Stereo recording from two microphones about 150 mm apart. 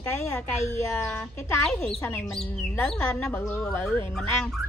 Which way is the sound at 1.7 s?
5° left (ahead or behind).